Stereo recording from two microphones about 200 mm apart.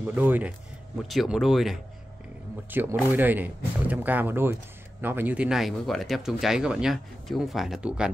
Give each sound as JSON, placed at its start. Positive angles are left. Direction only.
{"t": 0.0, "sound": "speech", "side_deg": -10}